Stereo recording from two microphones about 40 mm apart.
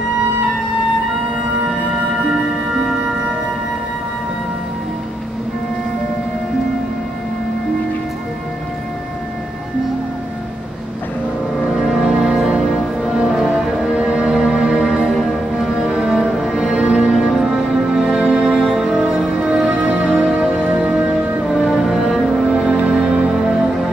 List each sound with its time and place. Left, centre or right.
2.7 s music: centre
11.7 s music: centre
12.0 s music: right
13.3 s music: centre
13.8 s music: right
15.9 s music: right
17.3 s music: centre
19.7 s music: right
21.1 s music: centre
22.0 s music: right
23.4 s music: centre